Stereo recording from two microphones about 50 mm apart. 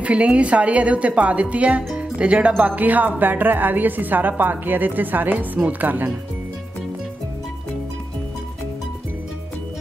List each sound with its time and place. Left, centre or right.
0.0 s speech: right